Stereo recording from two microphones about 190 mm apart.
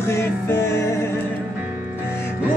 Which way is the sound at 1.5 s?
10° right (ahead or behind).